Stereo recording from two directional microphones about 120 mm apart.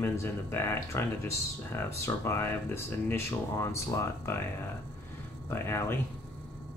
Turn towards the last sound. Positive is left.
turn(degrees=20)  # may be behind; listen again after turning